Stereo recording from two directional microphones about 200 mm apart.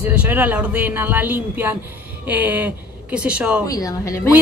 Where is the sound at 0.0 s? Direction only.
5° right (ahead or behind).